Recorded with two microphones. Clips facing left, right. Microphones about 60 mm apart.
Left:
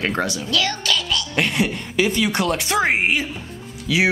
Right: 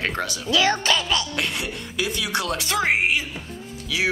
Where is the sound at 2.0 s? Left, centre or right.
Left.